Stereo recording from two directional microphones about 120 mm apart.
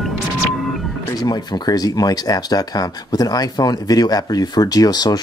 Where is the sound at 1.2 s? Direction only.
35° left (ahead or behind).